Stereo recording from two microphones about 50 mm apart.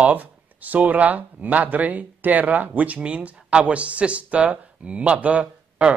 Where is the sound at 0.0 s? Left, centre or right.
Right.